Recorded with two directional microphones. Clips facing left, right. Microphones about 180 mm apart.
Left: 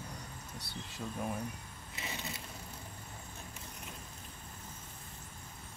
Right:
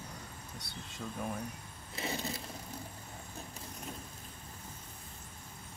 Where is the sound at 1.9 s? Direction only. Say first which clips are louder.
Right 6 dB; 35° right (ahead or behind).